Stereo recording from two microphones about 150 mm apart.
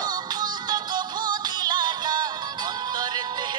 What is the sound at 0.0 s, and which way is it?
Music, 30° right (ahead or behind).